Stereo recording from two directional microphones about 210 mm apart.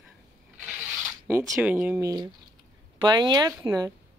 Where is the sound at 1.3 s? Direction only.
10° right (ahead or behind).